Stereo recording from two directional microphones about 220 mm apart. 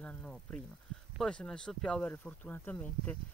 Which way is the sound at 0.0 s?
5° left (ahead or behind).